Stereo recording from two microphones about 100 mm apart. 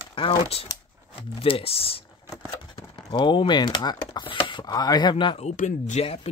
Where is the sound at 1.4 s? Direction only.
70° left (ahead or behind).